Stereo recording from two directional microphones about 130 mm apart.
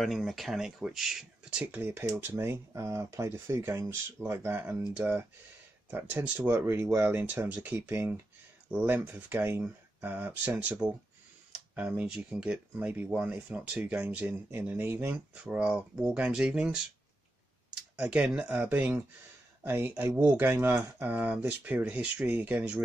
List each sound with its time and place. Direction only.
0.0 s speech: centre (ahead or behind)